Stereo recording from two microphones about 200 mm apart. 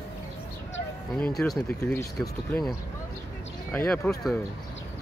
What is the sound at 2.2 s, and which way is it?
Speech, centre (ahead or behind).